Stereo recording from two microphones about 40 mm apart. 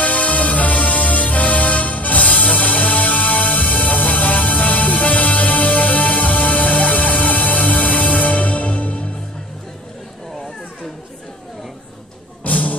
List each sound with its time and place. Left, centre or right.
0.0 s music: left
12.4 s music: left